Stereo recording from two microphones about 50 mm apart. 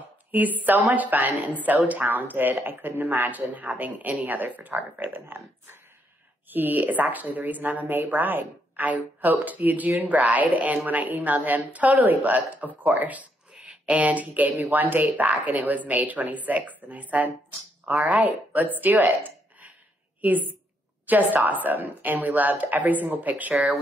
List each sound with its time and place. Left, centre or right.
0.3 s a woman's voice: right